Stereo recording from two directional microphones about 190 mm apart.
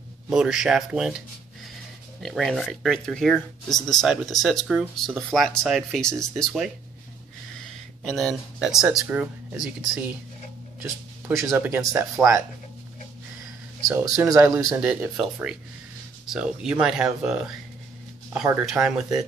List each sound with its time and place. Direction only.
0.3 s speech: 5° right (ahead or behind)
8.0 s speech: centre (ahead or behind); by 12.3 s 15° right (ahead or behind)
13.8 s speech: 20° right (ahead or behind); by 19.2 s centre (ahead or behind)